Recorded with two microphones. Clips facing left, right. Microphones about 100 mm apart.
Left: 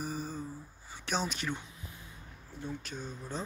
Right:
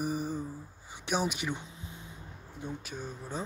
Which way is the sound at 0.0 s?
15° right (ahead or behind).